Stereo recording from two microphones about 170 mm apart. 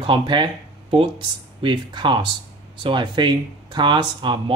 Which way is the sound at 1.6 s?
30° right (ahead or behind).